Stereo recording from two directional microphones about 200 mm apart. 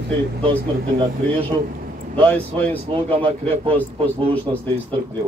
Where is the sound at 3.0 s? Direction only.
25° right (ahead or behind).